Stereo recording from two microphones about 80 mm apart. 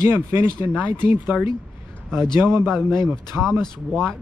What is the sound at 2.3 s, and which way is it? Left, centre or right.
Speech, right.